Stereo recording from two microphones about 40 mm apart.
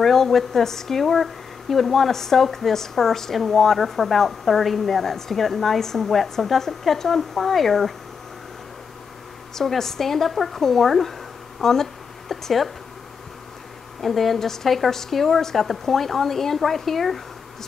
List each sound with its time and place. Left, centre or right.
0.0 s speech: centre
9.6 s speech: centre
14.0 s speech: centre